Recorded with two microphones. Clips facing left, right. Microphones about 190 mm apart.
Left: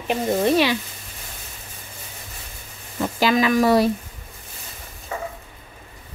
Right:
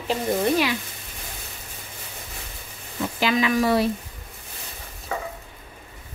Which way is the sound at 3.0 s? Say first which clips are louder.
Left 3 dB; 45° left (ahead or behind).